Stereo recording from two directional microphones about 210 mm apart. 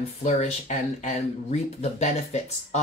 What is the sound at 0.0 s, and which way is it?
Speech, 30° left (ahead or behind).